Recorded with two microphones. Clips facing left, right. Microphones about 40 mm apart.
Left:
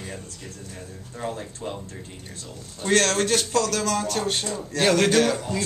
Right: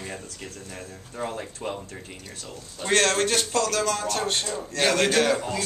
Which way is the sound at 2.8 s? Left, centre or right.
Centre.